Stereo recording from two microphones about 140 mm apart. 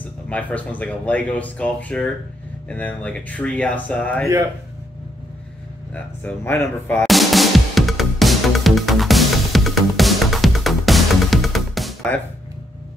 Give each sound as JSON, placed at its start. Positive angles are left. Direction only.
{"t": 0.0, "sound": "speech", "side_deg": 10}
{"t": 6.2, "sound": "speech", "side_deg": 15}
{"t": 7.0, "sound": "music", "side_deg": 0}